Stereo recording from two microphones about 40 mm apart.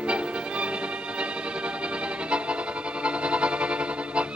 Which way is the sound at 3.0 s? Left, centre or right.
Right.